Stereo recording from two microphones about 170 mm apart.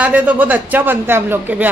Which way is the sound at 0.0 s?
10° right (ahead or behind).